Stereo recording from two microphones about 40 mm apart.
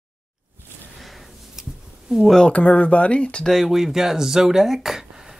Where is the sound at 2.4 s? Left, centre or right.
Left.